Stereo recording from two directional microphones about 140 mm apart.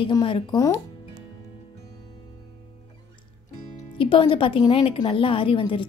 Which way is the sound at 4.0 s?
40° left (ahead or behind).